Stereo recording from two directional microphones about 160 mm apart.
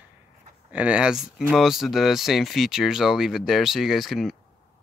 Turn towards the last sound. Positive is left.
turn(degrees=0)  # may be behind; listen again after turning